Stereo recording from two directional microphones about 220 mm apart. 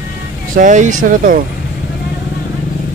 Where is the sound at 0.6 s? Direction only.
35° right (ahead or behind).